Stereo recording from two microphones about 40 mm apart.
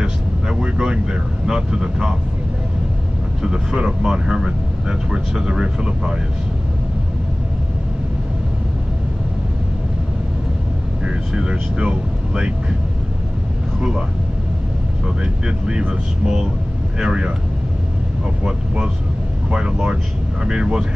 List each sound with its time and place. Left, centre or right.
0.0 s vehicle: centre
1.5 s speech: centre
3.4 s speech: right
11.1 s speech: right
13.7 s speech: right
15.4 s speech: right
19.5 s speech: right